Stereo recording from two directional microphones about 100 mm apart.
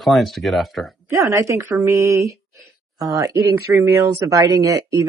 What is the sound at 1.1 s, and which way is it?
Speech, 35° right (ahead or behind).